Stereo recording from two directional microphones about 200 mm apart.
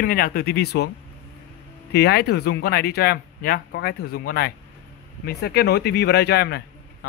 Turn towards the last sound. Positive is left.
turn(degrees=55)  # may be behind; listen again after turning